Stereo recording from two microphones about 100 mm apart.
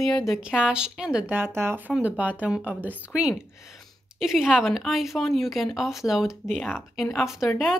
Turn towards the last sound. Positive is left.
turn(degrees=-5)  # may be behind; listen again after turning